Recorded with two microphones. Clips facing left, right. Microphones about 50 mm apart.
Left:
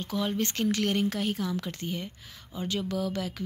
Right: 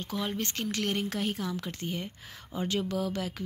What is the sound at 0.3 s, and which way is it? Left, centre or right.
Speech, centre.